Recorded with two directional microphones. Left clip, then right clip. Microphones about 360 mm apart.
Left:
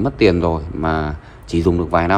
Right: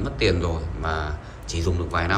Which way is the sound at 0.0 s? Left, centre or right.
Centre.